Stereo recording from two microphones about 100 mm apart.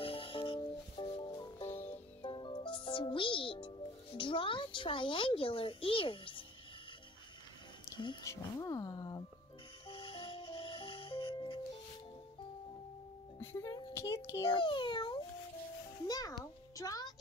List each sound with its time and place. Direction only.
0.0 s music: 65° left (ahead or behind)
1.7 s music: 20° left (ahead or behind)
2.2 s music: 55° left (ahead or behind)
7.9 s music: 50° left (ahead or behind)
8.2 s speech: 30° left (ahead or behind)
9.8 s music: 65° left (ahead or behind)
13.4 s music: 20° left (ahead or behind)
13.7 s a sound: 30° left (ahead or behind)
14.4 s a sound: 55° left (ahead or behind)
16.1 s a sound: 40° left (ahead or behind)